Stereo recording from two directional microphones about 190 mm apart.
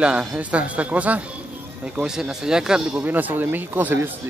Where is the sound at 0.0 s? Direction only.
5° right (ahead or behind).